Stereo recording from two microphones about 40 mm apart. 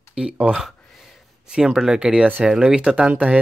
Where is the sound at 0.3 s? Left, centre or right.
Right.